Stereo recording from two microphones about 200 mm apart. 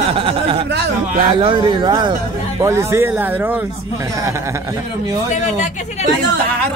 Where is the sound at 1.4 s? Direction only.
25° right (ahead or behind); by 3.6 s 10° right (ahead or behind).